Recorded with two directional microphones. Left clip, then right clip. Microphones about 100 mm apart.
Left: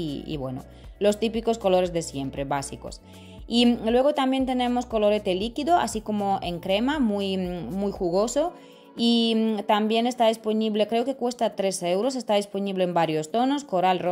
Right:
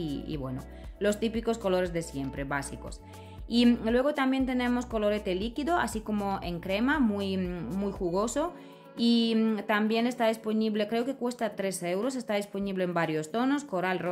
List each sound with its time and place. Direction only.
0.0 s speech: 30° left (ahead or behind)